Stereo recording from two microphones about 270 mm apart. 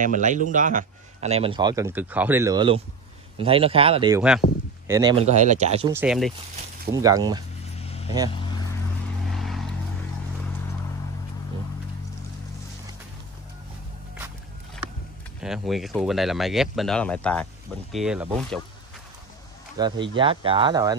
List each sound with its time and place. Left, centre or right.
0.0 s a man's voice: right; by 5.1 s centre
5.1 s speech: right
5.9 s speech: centre
6.9 s speech: centre
7.8 s vehicle: left
9.3 s vehicle: centre
15.4 s speech: centre
19.8 s speech: centre